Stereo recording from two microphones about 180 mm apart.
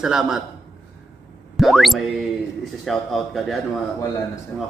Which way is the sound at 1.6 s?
Centre (ahead or behind).